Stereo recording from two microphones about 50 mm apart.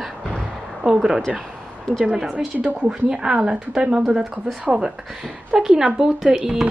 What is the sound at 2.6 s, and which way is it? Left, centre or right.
A woman's voice, centre.